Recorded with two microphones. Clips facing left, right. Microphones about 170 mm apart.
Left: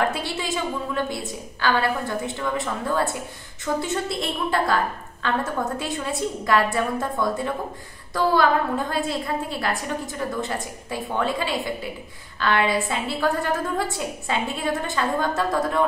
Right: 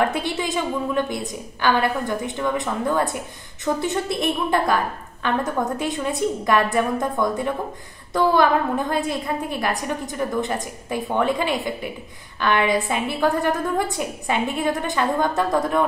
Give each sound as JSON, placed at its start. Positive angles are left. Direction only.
{"t": 0.1, "sound": "a woman's voice", "side_deg": -20}